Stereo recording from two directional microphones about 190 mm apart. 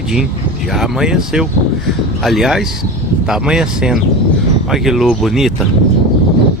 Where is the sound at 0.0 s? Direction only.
5° right (ahead or behind).